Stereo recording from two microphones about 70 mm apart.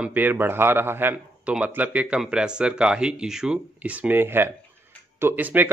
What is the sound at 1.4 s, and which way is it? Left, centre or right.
Speech, centre.